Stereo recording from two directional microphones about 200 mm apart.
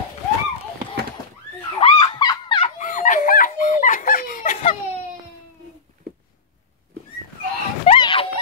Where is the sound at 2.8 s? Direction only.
40° left (ahead or behind).